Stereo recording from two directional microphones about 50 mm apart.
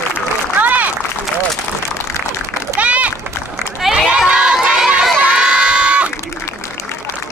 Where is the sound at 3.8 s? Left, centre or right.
Centre.